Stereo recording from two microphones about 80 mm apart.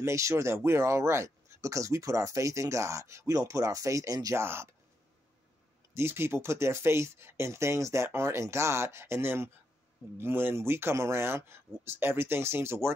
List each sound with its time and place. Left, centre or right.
0.0 s speech: right
4.4 s speech: right
5.9 s speech: right